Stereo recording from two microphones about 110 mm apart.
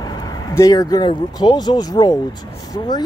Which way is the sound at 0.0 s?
35° left (ahead or behind).